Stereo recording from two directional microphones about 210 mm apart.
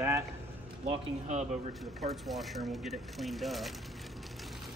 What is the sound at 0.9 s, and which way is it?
Speech, 30° right (ahead or behind).